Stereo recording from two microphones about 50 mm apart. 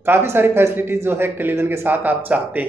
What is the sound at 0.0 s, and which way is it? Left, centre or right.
Speech, right.